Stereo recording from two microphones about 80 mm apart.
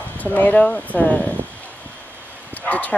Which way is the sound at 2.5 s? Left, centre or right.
Centre.